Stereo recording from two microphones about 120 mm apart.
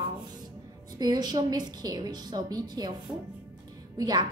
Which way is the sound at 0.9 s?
35° right (ahead or behind).